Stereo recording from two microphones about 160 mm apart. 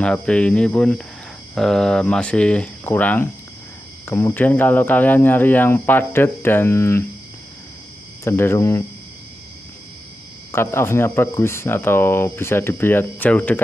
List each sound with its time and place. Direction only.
0.0 s speech: 5° left (ahead or behind)
8.2 s speech: 15° left (ahead or behind)
10.5 s speech: 15° left (ahead or behind)